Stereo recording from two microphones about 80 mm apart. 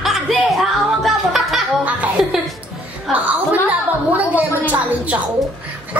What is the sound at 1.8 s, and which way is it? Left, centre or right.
Music, centre.